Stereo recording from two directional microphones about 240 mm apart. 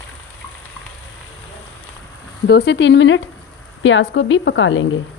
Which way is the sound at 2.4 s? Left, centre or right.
Left.